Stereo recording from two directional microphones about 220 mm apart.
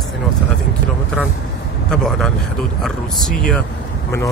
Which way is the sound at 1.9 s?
5° left (ahead or behind).